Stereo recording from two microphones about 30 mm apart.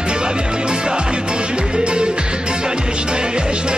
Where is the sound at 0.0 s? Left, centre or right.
Right.